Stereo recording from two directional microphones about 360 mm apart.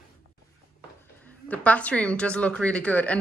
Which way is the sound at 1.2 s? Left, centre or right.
Centre.